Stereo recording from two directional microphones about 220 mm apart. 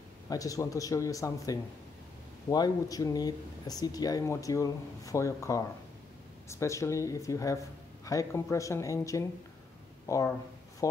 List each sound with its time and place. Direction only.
0.3 s speech: 15° left (ahead or behind)